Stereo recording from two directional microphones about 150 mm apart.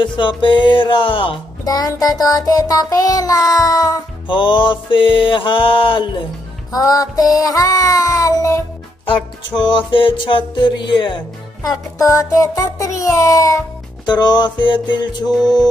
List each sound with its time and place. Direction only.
0.0 s music: 30° left (ahead or behind)
1.6 s music: 25° left (ahead or behind)
6.7 s music: 25° left (ahead or behind)
9.6 s music: 30° left (ahead or behind)
11.7 s music: 20° left (ahead or behind)